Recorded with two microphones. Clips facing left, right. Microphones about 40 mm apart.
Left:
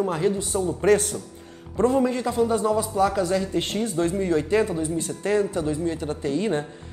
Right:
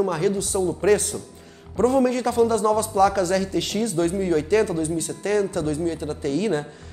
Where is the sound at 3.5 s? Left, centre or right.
Left.